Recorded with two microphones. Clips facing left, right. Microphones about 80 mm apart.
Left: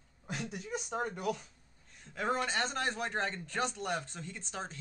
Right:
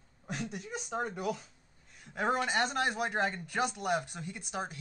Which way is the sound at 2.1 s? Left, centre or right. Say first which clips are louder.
Right 2 dB; centre.